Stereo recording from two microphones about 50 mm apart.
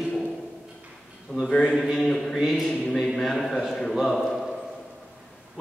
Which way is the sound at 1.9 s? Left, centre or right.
Centre.